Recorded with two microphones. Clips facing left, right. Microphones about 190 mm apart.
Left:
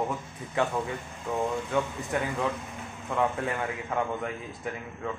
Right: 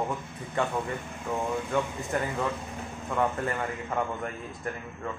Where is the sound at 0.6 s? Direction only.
5° left (ahead or behind).